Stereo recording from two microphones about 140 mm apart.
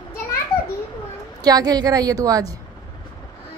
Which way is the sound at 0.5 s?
45° left (ahead or behind).